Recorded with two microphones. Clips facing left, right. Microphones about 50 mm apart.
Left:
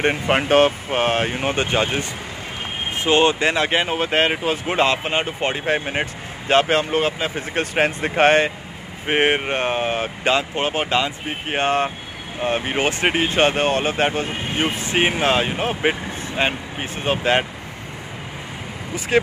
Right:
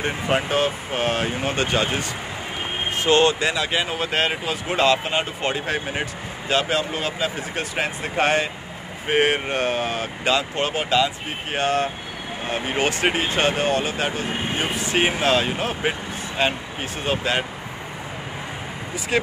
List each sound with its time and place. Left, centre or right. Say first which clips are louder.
0.0 s speech: left 4 dB; left
9.0 s speech: left 1 dB; left
13.3 s speech: left 3 dB; left
15.0 s speech: left 1 dB; centre